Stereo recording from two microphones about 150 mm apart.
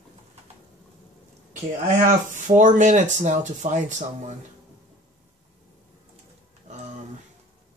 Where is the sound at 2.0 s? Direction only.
60° right (ahead or behind).